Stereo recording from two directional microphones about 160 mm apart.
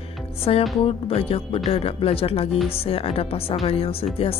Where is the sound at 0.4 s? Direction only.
35° left (ahead or behind).